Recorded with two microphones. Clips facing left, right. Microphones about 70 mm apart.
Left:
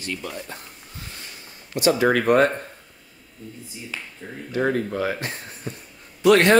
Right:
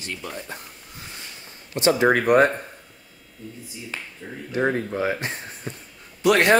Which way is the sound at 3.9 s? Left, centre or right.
Right.